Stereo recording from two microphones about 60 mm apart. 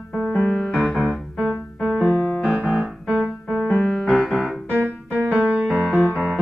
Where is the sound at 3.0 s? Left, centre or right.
Centre.